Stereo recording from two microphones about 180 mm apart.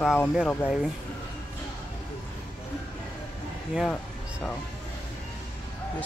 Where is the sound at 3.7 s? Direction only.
5° left (ahead or behind).